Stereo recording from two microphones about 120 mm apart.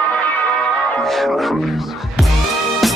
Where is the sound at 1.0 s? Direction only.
Centre (ahead or behind).